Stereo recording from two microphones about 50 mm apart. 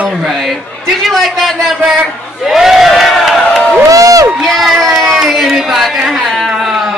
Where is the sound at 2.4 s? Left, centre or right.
Centre.